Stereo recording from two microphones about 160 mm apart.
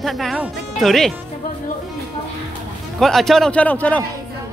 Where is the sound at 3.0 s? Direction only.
Centre (ahead or behind).